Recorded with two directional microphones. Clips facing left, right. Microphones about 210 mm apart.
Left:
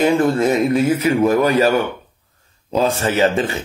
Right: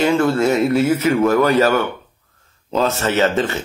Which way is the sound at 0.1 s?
15° left (ahead or behind).